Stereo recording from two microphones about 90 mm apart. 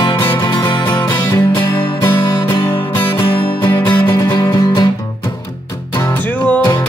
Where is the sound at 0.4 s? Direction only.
55° left (ahead or behind).